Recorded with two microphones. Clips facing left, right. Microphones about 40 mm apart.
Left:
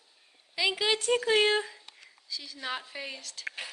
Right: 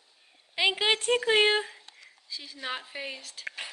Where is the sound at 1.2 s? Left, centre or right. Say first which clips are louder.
Right 1 dB; right.